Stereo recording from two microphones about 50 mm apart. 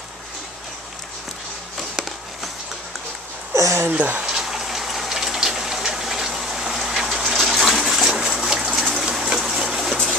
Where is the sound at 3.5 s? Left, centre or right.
Right.